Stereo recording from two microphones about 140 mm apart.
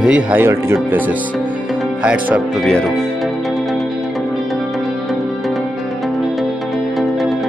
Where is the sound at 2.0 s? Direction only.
10° right (ahead or behind).